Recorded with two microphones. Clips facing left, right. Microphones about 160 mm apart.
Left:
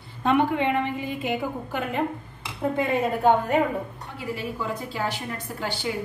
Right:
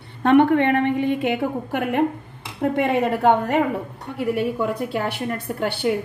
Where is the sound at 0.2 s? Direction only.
60° right (ahead or behind).